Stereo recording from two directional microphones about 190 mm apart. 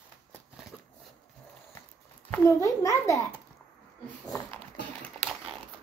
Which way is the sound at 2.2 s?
15° left (ahead or behind).